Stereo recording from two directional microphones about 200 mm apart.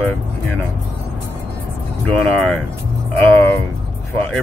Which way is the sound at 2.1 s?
5° left (ahead or behind).